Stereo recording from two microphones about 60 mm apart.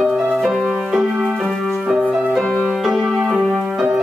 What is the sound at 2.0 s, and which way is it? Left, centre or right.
Music, centre.